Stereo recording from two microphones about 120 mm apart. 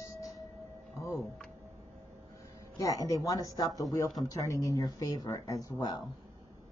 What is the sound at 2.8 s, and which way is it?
Speech, 30° left (ahead or behind).